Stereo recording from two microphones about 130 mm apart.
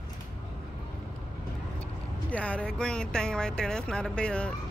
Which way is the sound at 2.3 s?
10° left (ahead or behind).